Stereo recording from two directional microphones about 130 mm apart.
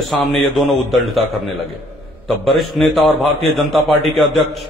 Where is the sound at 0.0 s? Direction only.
Centre (ahead or behind).